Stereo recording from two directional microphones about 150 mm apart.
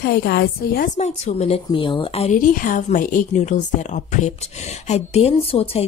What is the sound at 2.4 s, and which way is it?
Speech, 65° left (ahead or behind).